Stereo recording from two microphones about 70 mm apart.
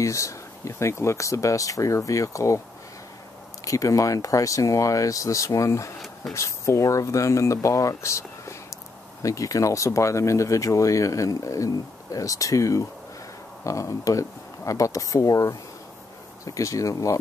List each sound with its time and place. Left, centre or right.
0.0 s speech: left
3.6 s speech: left
7.9 s a sound: left
9.2 s speech: left